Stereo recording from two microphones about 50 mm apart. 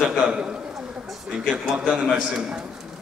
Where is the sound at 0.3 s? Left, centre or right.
Centre.